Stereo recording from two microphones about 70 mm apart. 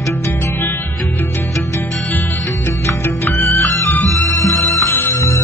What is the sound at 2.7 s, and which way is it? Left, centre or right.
Music, left.